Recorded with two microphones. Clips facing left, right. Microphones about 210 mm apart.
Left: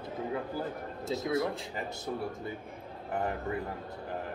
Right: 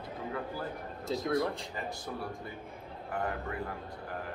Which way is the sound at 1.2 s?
5° left (ahead or behind).